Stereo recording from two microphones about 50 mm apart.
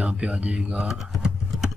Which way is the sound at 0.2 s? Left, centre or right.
Right.